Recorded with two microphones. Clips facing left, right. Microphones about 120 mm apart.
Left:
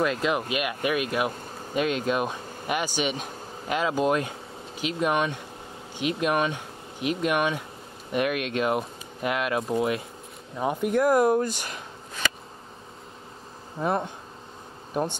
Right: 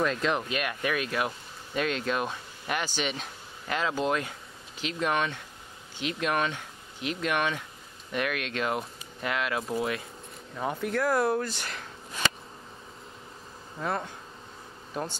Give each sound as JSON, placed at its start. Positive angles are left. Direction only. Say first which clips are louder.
{"t": 0.0, "sound": "speech", "louder": "left 2 dB", "side_deg": 10}
{"t": 13.7, "sound": "bee", "louder": "left 5 dB", "side_deg": 20}